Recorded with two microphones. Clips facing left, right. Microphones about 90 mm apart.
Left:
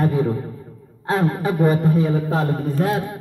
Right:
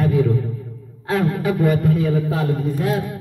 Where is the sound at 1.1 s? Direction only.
30° left (ahead or behind).